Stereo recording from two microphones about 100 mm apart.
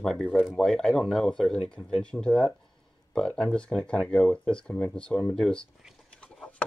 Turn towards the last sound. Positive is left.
turn(degrees=10)  # may be behind; listen again after turning